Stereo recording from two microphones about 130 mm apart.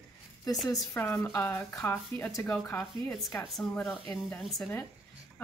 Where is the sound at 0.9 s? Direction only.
15° left (ahead or behind).